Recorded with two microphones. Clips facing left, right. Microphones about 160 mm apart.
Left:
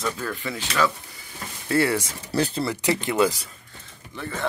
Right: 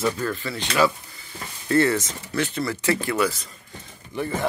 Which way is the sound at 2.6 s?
20° left (ahead or behind).